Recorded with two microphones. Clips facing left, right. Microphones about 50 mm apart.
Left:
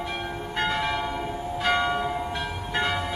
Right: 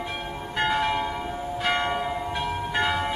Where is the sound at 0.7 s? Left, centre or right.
Centre.